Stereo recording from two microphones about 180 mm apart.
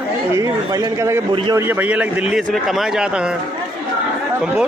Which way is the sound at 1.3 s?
30° right (ahead or behind).